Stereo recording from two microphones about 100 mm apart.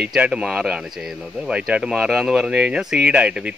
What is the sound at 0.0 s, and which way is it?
Speech, 10° right (ahead or behind).